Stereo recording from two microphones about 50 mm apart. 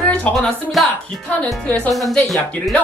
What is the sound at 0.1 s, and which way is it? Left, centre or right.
Music, left.